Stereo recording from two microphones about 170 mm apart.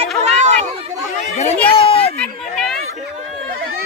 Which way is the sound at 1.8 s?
35° left (ahead or behind).